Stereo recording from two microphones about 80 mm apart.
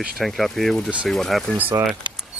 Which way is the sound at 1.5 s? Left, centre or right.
Right.